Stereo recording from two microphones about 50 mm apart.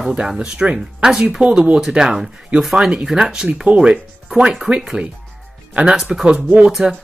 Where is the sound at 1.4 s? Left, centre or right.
Centre.